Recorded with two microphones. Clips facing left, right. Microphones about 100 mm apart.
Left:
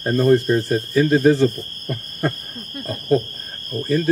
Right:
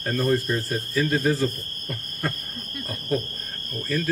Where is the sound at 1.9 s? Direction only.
30° left (ahead or behind).